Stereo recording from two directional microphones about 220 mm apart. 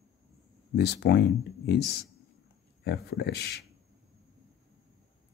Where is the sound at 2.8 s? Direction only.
50° left (ahead or behind).